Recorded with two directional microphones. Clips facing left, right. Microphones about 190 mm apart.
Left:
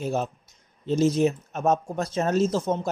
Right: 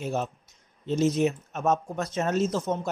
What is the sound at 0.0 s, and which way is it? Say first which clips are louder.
Speech: left 2 dB; 35° left (ahead or behind).